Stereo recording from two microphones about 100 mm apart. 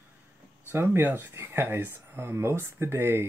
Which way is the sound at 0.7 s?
25° right (ahead or behind).